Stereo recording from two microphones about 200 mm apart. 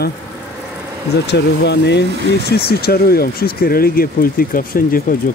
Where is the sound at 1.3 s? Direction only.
60° left (ahead or behind).